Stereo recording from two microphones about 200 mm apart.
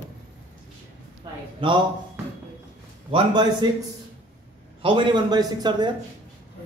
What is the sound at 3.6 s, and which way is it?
Speech, 25° right (ahead or behind).